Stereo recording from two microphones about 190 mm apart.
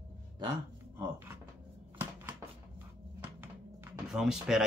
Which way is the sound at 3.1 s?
10° right (ahead or behind).